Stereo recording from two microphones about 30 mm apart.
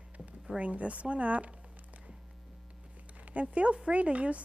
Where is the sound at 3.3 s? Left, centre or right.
Right.